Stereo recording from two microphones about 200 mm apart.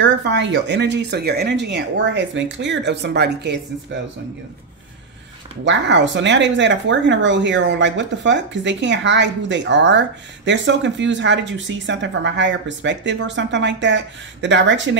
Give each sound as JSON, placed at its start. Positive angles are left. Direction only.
{"t": 0.0, "sound": "speech", "side_deg": -65}
{"t": 5.7, "sound": "speech", "side_deg": -65}